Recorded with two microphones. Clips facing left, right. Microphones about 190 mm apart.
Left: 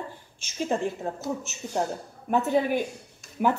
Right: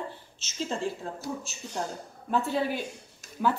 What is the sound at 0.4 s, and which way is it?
A woman's voice, 15° left (ahead or behind).